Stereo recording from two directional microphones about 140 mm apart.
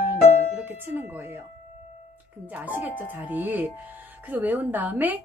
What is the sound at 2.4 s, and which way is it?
A woman's voice, 10° right (ahead or behind).